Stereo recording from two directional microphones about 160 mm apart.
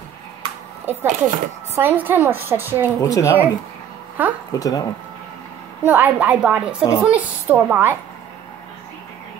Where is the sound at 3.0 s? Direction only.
20° left (ahead or behind).